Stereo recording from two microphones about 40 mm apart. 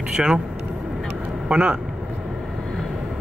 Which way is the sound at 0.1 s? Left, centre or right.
Centre.